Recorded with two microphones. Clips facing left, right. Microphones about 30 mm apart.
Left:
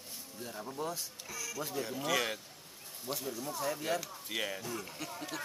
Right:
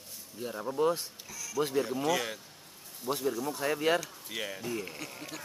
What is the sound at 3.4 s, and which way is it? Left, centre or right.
Speech, right.